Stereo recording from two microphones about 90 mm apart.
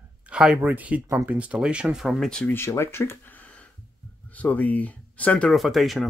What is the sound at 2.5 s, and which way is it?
Speech, 30° left (ahead or behind).